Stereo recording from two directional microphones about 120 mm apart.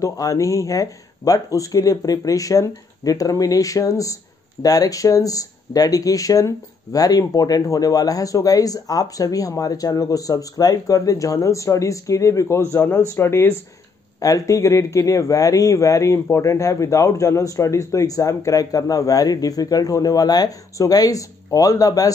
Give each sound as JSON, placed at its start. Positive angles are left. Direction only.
{"t": 0.0, "sound": "speech", "side_deg": 25}